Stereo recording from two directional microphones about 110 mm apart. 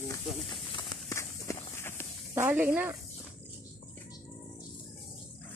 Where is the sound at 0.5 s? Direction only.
50° left (ahead or behind).